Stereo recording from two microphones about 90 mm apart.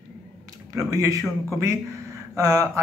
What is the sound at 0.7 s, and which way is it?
Speech, 35° right (ahead or behind).